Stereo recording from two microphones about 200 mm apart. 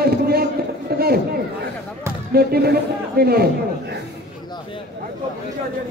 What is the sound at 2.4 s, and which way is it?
Music, 50° right (ahead or behind).